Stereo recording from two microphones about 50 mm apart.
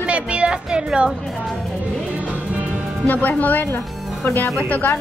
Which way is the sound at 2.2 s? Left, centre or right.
Right.